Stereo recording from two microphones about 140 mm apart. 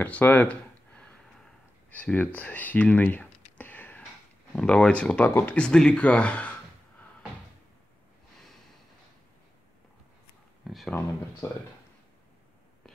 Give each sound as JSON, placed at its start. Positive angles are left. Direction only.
{"t": 0.0, "sound": "a sound", "side_deg": 10}
{"t": 1.9, "sound": "speech", "side_deg": 10}
{"t": 10.6, "sound": "speech", "side_deg": 0}
{"t": 11.4, "sound": "speech", "side_deg": 20}